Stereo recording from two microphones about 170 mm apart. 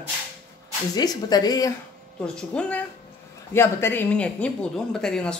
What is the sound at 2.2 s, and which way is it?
Speech, 5° left (ahead or behind).